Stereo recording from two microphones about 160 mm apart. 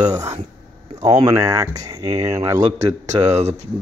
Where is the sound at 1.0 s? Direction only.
25° right (ahead or behind).